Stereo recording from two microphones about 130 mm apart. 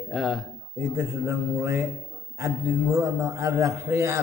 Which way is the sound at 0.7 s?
20° right (ahead or behind).